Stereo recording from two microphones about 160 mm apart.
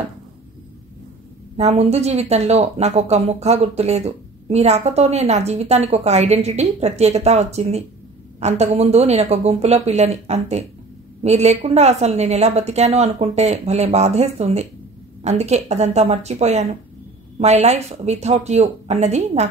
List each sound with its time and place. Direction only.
1.6 s speech: 40° right (ahead or behind)